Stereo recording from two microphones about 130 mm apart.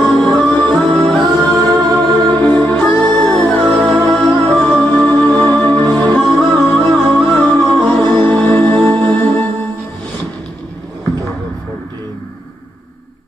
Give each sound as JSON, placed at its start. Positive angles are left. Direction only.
{"t": 0.0, "sound": "music", "side_deg": 5}
{"t": 8.0, "sound": "music", "side_deg": -35}
{"t": 8.3, "sound": "music", "side_deg": 5}